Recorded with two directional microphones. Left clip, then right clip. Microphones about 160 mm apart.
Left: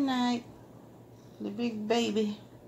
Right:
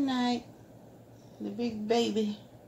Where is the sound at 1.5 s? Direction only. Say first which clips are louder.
Right 1 dB; 30° left (ahead or behind).